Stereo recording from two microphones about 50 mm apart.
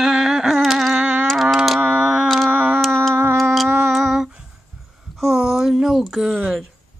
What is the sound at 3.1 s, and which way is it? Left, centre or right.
Tick-tock, right.